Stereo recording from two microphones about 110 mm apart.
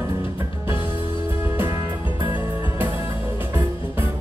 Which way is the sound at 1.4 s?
20° right (ahead or behind).